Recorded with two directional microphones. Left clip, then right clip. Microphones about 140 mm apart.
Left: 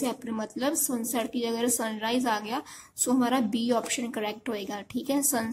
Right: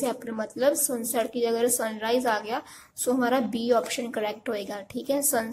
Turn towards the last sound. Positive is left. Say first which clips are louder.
# right 2 dB
turn(degrees=15)  # may be behind; listen again after turning